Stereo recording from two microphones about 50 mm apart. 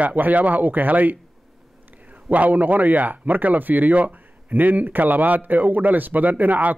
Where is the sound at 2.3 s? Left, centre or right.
Right.